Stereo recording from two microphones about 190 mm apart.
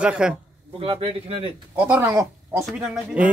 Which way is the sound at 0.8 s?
30° right (ahead or behind).